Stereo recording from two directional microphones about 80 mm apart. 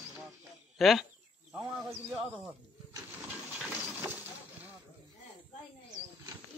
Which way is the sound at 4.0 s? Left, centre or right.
Right.